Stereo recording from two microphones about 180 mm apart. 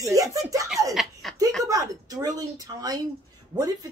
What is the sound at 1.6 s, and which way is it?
Speech, 20° right (ahead or behind).